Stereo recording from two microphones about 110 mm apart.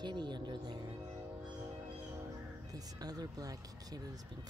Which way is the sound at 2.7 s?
35° right (ahead or behind).